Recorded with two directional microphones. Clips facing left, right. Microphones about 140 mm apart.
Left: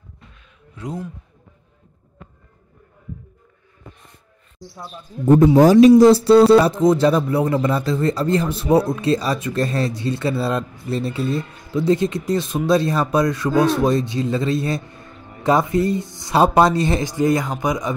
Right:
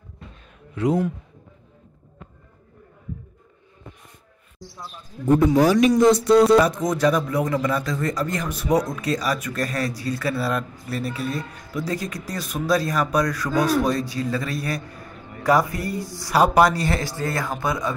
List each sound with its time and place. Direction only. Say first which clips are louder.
0.7 s a man's voice: right 9 dB; 75° right (ahead or behind)
5.2 s speech: left 5 dB; 25° left (ahead or behind)
5.6 s a man's voice: left 9 dB; 40° left (ahead or behind)
5.9 s speech: left 6 dB; 30° left (ahead or behind); by 17.9 s 15° left (ahead or behind)